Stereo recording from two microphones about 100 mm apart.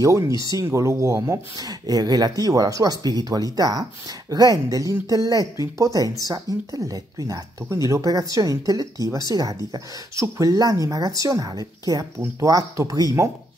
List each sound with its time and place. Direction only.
0.0 s speech: 35° right (ahead or behind)